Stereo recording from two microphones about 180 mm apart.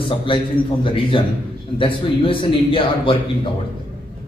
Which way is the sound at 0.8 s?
30° left (ahead or behind).